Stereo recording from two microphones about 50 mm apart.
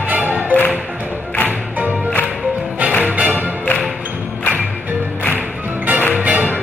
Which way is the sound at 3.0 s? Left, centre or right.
Right.